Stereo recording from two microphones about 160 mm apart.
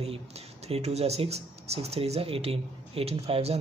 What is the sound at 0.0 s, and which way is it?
Speech, 40° right (ahead or behind).